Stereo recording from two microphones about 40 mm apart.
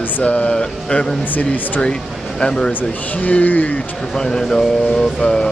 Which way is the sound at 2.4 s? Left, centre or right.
Centre.